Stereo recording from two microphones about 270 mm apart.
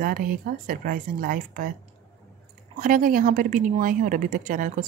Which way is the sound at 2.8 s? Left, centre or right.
Right.